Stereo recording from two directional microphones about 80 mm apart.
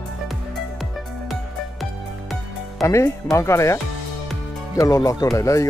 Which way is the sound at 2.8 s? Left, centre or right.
Left.